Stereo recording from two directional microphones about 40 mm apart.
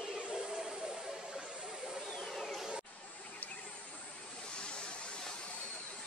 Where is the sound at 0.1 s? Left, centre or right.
Centre.